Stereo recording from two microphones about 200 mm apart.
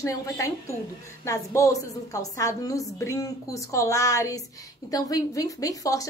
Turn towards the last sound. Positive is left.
turn(degrees=15)  # may be behind; listen again after turning